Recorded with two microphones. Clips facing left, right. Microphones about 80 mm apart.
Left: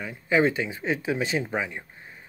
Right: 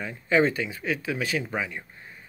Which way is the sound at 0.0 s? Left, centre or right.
Centre.